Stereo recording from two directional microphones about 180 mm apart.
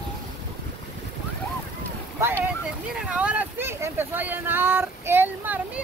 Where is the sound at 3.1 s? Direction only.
5° right (ahead or behind).